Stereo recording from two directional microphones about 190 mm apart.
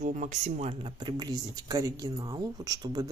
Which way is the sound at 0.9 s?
20° right (ahead or behind).